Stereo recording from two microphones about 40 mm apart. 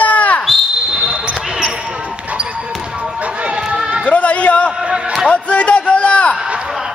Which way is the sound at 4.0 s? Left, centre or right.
Left.